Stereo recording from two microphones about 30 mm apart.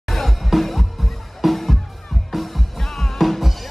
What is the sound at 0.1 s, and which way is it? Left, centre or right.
Music, centre.